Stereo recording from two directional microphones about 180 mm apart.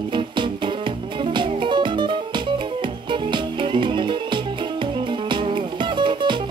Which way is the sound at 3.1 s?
25° right (ahead or behind).